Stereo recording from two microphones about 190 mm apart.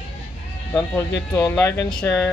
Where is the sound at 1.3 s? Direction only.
5° left (ahead or behind).